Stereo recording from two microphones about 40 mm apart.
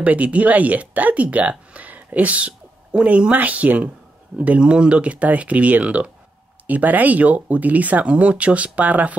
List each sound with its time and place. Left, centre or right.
0.0 s speech: right
4.6 s speech: right
6.7 s speech: right